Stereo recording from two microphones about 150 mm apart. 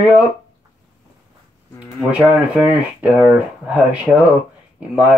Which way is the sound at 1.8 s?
5° right (ahead or behind).